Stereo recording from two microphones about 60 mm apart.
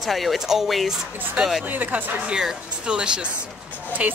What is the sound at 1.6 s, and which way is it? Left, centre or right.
Speech, right.